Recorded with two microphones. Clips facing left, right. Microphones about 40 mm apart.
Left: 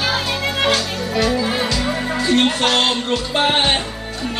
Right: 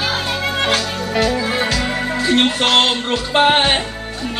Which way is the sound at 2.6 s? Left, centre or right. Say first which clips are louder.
Right 2 dB; centre.